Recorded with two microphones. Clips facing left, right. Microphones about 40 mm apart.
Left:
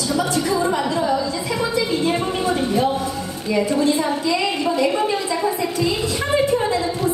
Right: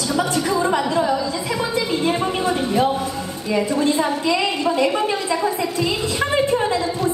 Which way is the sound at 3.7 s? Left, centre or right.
Right.